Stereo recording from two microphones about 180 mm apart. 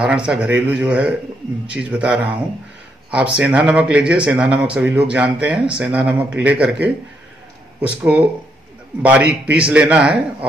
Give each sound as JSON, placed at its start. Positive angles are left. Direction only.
{"t": 0.0, "sound": "speech", "side_deg": -5}
{"t": 9.3, "sound": "speech", "side_deg": -5}